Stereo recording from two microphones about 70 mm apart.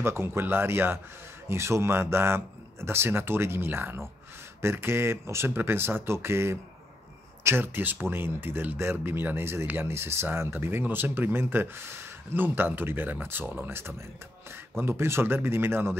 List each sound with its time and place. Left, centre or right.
0.0 s speech: right